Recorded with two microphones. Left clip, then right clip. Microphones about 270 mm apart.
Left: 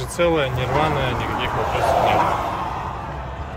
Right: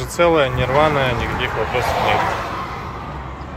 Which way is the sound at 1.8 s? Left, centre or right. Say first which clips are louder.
Left 1 dB; left.